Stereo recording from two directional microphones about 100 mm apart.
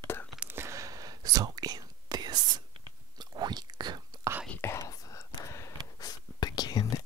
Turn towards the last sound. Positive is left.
turn(degrees=40)  # may be behind; listen again after turning